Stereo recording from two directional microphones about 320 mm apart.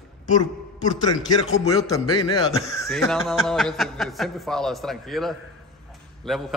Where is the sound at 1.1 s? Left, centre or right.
Centre.